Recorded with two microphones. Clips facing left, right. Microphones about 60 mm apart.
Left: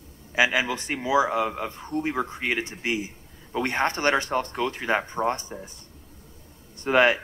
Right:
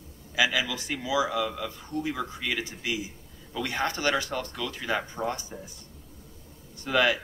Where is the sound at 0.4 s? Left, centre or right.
Left.